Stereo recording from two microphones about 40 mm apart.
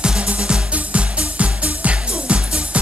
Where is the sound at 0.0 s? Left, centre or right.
Right.